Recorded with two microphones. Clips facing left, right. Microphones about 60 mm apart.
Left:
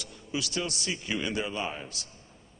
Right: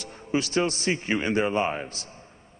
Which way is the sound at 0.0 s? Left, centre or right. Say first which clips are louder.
Right 7 dB; right.